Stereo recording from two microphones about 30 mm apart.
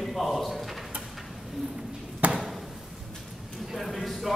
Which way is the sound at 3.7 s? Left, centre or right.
Centre.